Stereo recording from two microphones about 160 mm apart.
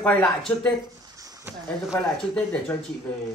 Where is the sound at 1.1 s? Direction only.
20° right (ahead or behind).